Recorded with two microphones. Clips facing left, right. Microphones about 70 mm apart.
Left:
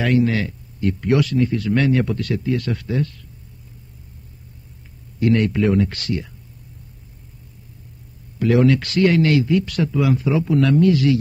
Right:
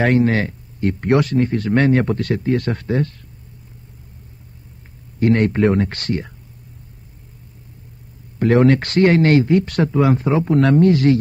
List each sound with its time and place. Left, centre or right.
0.0 s speech: right
5.2 s speech: right
8.4 s speech: right